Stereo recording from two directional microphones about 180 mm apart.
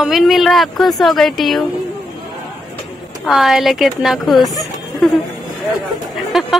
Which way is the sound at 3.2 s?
Centre (ahead or behind).